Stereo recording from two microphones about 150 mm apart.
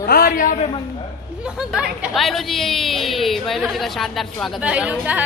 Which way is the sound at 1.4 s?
5° right (ahead or behind).